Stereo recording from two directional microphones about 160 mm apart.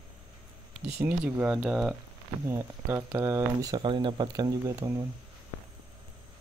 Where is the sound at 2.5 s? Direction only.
20° right (ahead or behind).